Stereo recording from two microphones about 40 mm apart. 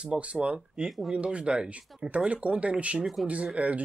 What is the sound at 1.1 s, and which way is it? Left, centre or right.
Speech, right.